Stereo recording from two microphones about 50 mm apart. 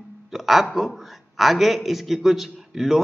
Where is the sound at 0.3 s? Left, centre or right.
Centre.